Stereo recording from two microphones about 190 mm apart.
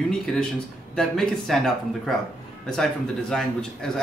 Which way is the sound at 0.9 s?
Centre (ahead or behind).